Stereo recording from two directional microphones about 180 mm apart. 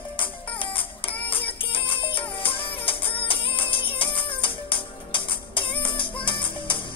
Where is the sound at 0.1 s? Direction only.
25° left (ahead or behind).